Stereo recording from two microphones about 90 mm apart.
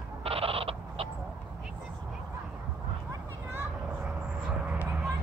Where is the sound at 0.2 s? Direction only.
90° right.